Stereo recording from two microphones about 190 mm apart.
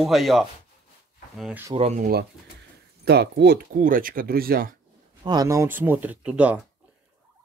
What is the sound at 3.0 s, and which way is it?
Speech, 60° right (ahead or behind).